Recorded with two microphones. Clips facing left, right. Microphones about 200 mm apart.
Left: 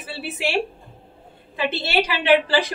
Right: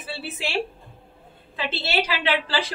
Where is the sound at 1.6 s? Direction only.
15° left (ahead or behind).